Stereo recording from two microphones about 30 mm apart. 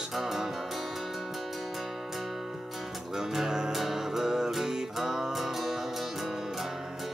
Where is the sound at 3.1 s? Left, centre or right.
Centre.